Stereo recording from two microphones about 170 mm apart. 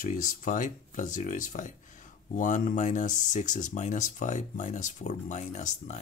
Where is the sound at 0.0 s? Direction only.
50° left (ahead or behind).